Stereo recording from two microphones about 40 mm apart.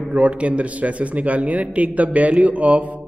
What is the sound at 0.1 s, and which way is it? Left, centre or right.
A man's voice, right.